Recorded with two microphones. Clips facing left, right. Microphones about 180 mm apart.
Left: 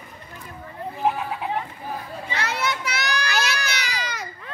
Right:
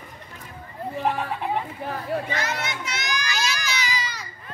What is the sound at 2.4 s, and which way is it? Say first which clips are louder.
Children playing: left 2 dB; 65° left (ahead or behind).